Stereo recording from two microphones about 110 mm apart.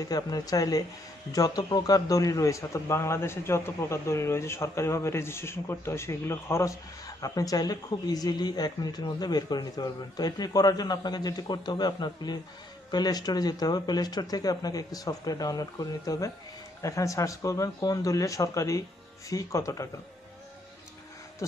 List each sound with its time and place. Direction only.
0.0 s a man's voice: 35° left (ahead or behind)
21.4 s speech: 30° left (ahead or behind)